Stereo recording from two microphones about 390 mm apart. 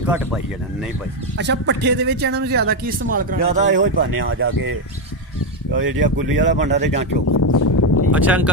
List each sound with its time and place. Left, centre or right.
0.0 s speech: centre
1.4 s speech: right
4.2 s speech: right
7.3 s a sound: left
8.1 s speech: centre